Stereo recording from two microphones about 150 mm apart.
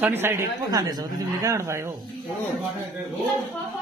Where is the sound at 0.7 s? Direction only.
25° right (ahead or behind).